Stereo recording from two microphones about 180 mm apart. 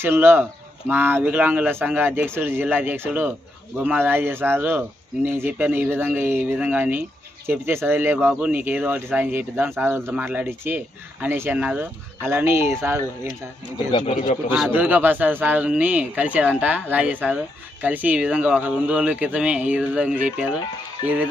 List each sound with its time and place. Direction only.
0.0 s speech: 10° right (ahead or behind)
13.9 s a man's voice: 35° left (ahead or behind)
14.5 s speech: 10° right (ahead or behind)